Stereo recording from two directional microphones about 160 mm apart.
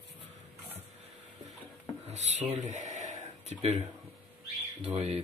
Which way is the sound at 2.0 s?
45° right (ahead or behind).